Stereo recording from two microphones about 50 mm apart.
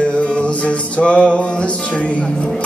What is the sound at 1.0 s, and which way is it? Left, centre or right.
Music, left.